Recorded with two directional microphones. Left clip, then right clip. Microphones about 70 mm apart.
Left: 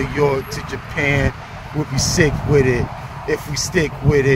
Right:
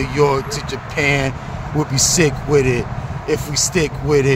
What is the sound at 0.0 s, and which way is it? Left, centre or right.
Speech, right.